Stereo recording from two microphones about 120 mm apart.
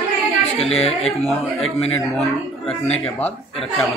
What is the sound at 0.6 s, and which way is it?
Speech, 55° left (ahead or behind).